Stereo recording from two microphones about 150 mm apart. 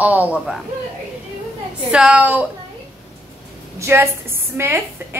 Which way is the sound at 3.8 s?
15° right (ahead or behind).